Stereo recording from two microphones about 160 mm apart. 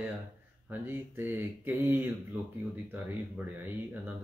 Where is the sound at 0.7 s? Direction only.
15° right (ahead or behind).